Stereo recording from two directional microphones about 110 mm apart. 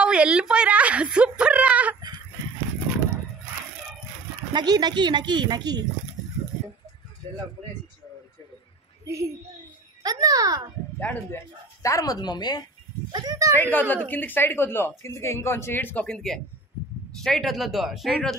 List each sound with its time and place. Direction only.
0.0 s a woman's voice: 10° right (ahead or behind)
4.5 s speech: 40° right (ahead or behind)
9.0 s speech: 25° right (ahead or behind)
10.0 s a sound: 35° right (ahead or behind)
11.0 s speech: 20° left (ahead or behind); by 12.6 s 40° left (ahead or behind)
13.1 s speech: 40° right (ahead or behind)
13.6 s a woman's voice: 15° left (ahead or behind)
16.1 s speech: 5° left (ahead or behind)